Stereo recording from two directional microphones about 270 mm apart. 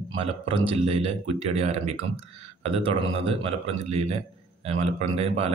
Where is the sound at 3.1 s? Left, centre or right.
Right.